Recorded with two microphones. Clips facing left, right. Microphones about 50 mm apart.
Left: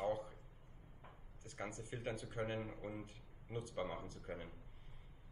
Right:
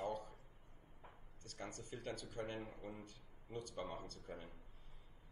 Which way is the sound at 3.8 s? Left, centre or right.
Left.